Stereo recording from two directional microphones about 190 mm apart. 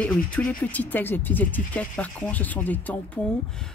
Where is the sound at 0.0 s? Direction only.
5° left (ahead or behind).